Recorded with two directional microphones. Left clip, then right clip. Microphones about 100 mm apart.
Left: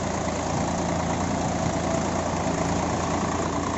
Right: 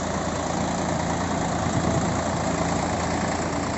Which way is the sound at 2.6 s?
40° right (ahead or behind).